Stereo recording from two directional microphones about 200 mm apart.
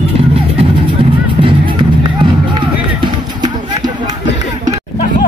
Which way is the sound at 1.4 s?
25° right (ahead or behind).